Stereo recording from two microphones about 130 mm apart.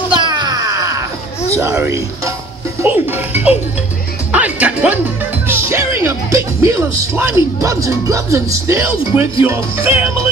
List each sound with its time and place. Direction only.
0.2 s a sound: 30° right (ahead or behind)
1.6 s speech: 20° right (ahead or behind)
2.8 s music: 15° right (ahead or behind)
5.5 s speech: 20° right (ahead or behind)